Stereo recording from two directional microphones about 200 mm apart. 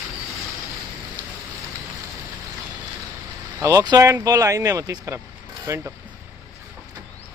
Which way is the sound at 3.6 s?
15° right (ahead or behind).